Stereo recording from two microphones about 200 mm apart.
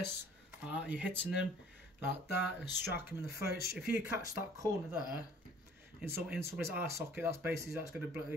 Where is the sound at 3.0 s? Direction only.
5° right (ahead or behind).